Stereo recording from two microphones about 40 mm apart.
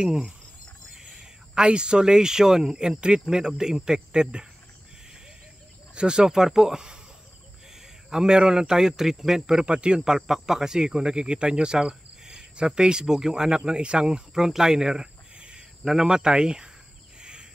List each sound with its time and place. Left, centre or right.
0.0 s speech: centre
0.9 s a sound: centre
1.5 s speech: right
5.9 s speech: right
8.1 s speech: centre
9.7 s speech: right
15.3 s a sound: right
15.8 s speech: centre
17.2 s a sound: right